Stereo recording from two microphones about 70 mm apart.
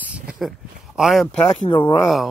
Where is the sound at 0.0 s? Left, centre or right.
Centre.